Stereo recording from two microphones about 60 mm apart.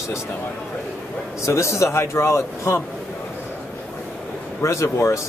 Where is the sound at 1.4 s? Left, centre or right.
Left.